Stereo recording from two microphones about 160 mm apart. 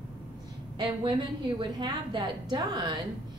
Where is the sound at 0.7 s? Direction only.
30° right (ahead or behind).